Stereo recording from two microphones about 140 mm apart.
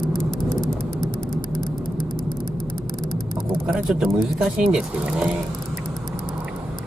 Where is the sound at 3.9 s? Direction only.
Centre (ahead or behind).